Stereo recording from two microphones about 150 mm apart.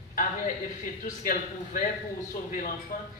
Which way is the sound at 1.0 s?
60° left (ahead or behind).